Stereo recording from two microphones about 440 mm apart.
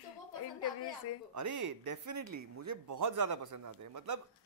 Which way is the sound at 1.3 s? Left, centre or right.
Right.